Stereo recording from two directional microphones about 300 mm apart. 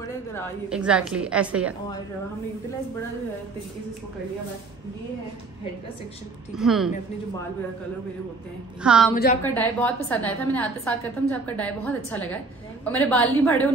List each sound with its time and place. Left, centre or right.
0.7 s a woman's voice: centre
6.5 s a woman's voice: centre
8.8 s a woman's voice: centre
9.1 s a woman's voice: left
9.4 s a woman's voice: centre